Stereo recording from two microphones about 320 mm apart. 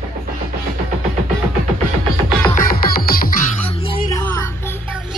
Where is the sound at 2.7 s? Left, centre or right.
Left.